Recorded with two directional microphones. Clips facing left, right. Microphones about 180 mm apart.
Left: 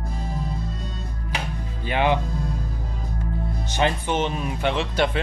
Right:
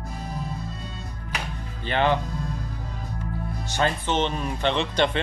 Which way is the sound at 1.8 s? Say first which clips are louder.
Left 1 dB; 10° left (ahead or behind).